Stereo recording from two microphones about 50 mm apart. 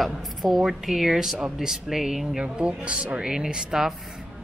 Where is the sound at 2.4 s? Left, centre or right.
Right.